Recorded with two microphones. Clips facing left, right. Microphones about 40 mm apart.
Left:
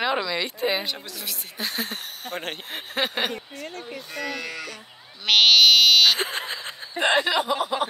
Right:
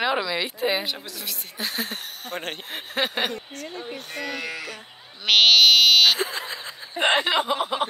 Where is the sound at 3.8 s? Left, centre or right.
Right.